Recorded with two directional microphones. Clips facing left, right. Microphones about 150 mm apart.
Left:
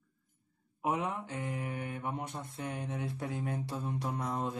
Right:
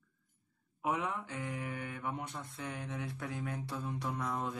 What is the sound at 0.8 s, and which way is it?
Mantra, 20° left (ahead or behind).